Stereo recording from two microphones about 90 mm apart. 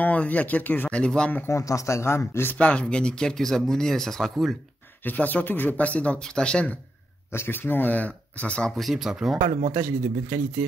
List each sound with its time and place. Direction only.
0.0 s speech: 15° left (ahead or behind)
1.4 s speech: 35° left (ahead or behind); by 4.6 s 5° left (ahead or behind)
5.0 s speech: 20° left (ahead or behind)
7.3 s speech: 25° left (ahead or behind); by 9.4 s 5° right (ahead or behind)
9.8 s speech: 30° right (ahead or behind)